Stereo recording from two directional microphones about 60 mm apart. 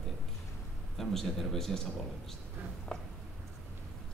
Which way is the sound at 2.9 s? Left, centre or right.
Centre.